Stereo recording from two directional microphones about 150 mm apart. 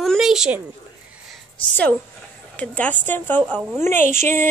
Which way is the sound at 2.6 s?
10° left (ahead or behind).